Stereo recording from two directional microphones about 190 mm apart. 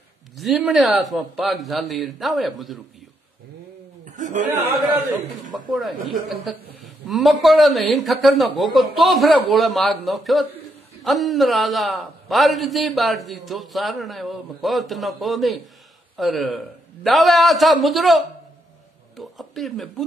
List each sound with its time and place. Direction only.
0.4 s a man's voice: centre (ahead or behind)
4.0 s chuckle: 40° right (ahead or behind)
5.7 s a man's voice: centre (ahead or behind)